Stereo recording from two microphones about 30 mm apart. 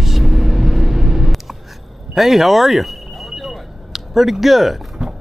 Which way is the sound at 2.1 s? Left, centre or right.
Centre.